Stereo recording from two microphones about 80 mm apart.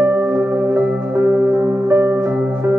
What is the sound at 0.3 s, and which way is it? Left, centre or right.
Music, right.